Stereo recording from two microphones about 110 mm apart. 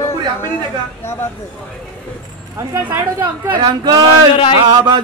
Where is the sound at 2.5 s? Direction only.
30° right (ahead or behind).